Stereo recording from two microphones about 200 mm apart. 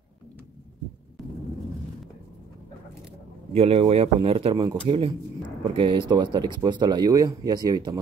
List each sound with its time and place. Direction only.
3.5 s speech: 30° right (ahead or behind)